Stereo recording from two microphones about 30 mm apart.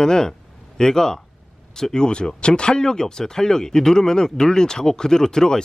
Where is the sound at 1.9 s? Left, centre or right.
Left.